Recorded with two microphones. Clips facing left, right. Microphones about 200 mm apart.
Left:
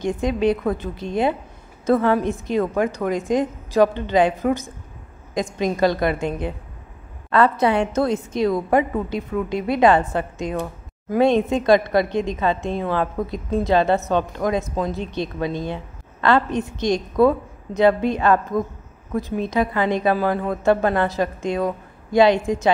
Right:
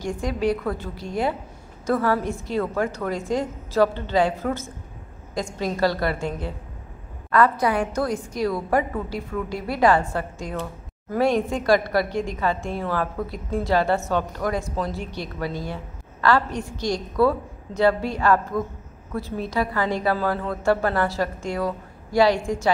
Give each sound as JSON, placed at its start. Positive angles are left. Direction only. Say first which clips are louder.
{"t": 0.0, "sound": "a woman's voice", "louder": "left 4 dB", "side_deg": 20}